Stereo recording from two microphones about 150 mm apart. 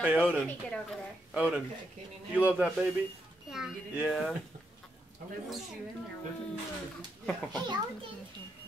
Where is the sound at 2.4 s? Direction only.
5° right (ahead or behind).